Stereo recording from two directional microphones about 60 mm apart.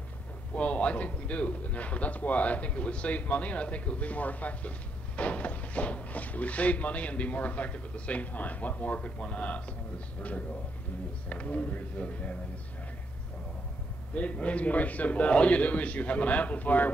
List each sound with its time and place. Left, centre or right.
0.6 s speech: left
14.1 s speech: left